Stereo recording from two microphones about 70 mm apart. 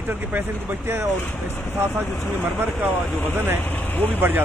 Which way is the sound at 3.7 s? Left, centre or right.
Left.